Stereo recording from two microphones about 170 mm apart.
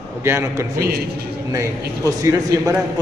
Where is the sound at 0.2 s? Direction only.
15° right (ahead or behind).